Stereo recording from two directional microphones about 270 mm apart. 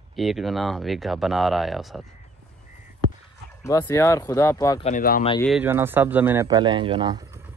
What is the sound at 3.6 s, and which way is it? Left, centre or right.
Speech, centre.